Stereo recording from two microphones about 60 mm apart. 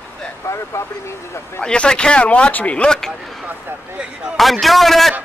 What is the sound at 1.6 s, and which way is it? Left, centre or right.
Speech, centre.